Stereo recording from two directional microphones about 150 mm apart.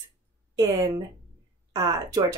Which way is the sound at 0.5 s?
25° right (ahead or behind).